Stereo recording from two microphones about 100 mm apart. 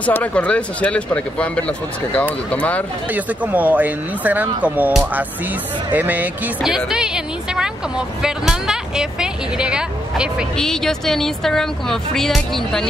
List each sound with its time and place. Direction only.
0.0 s speech: 15° left (ahead or behind)
3.1 s a woman's voice: 15° right (ahead or behind)
8.2 s speech: 5° right (ahead or behind)
10.6 s a woman's voice: 5° left (ahead or behind)